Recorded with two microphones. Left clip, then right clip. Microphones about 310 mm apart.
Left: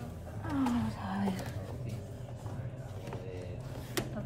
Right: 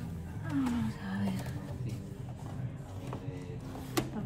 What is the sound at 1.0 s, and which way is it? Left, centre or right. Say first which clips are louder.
Roaring cats: left 2 dB; left.